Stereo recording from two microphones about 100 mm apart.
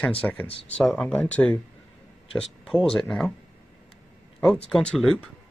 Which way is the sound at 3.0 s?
5° left (ahead or behind).